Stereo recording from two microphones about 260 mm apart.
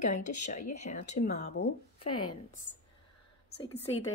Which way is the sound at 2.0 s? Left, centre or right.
Left.